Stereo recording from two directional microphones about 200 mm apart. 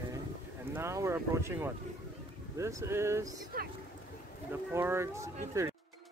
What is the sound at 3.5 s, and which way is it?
Boat, 45° right (ahead or behind).